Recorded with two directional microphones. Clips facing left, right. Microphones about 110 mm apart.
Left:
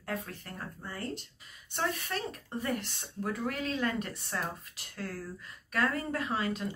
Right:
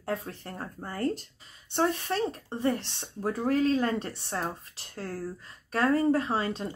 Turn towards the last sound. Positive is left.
turn(degrees=-30)  # may be behind; listen again after turning